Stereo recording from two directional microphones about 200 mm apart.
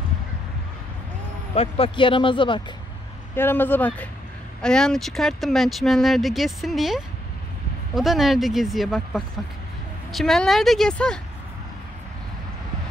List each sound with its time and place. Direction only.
1.5 s speech: 30° left (ahead or behind)
3.3 s speech: 10° left (ahead or behind)